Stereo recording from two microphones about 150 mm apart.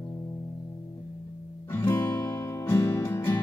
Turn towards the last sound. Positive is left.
turn(degrees=20)  # may be behind; listen again after turning